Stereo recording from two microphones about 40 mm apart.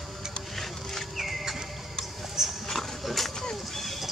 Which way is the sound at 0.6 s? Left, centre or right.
Centre.